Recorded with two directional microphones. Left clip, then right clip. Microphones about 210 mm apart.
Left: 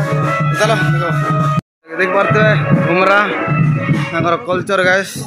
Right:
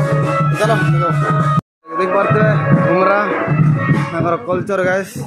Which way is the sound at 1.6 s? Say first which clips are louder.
Left 1 dB; centre (ahead or behind).